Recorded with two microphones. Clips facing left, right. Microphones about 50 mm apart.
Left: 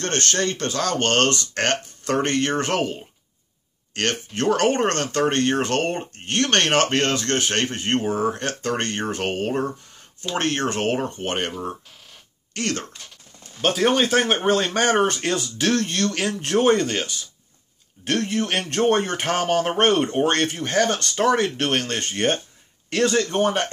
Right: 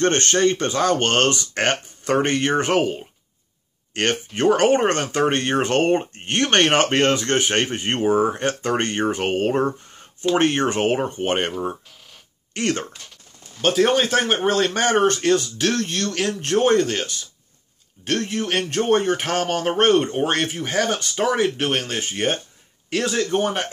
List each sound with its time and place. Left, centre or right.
0.0 s speech: right
13.6 s speech: centre